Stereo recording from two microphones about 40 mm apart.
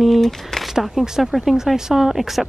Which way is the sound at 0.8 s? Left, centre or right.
Centre.